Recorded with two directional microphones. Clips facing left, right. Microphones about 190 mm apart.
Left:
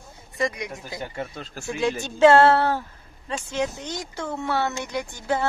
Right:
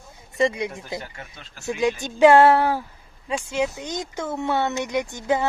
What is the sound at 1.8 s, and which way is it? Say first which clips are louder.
Speech: right 1 dB; 15° right (ahead or behind).